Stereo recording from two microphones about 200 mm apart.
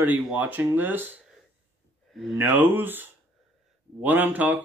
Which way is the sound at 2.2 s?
Centre (ahead or behind).